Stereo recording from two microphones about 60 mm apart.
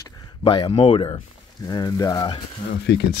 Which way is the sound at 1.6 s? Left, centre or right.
Left.